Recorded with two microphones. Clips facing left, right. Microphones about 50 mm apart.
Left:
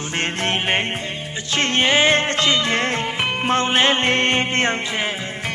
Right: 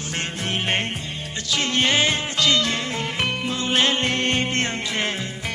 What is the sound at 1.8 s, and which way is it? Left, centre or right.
Music, left.